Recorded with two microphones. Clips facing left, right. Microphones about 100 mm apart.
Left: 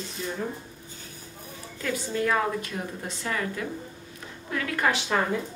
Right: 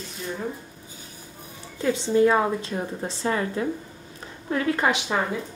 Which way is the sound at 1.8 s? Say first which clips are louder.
Right 7 dB; 25° right (ahead or behind).